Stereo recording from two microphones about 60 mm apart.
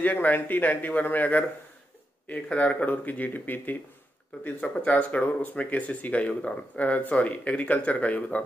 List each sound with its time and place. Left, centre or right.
0.0 s speech: left